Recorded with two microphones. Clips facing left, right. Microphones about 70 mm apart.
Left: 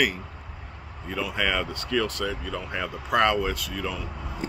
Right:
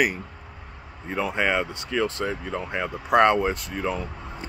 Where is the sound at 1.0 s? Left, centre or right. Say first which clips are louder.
Right 3 dB; right.